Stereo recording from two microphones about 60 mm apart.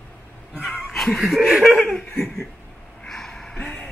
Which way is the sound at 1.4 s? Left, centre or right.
Centre.